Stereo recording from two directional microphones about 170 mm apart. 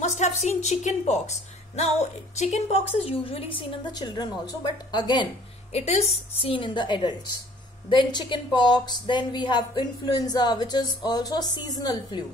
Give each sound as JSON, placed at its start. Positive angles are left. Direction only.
{"t": 0.0, "sound": "a woman's voice", "side_deg": 45}
{"t": 5.8, "sound": "a woman's voice", "side_deg": 40}